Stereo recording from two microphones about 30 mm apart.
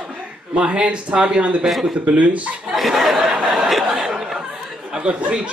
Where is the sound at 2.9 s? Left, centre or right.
Centre.